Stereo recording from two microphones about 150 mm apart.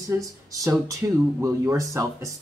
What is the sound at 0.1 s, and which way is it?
Speech, 20° right (ahead or behind).